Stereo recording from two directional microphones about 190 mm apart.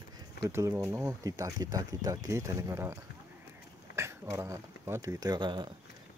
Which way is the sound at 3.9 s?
15° right (ahead or behind).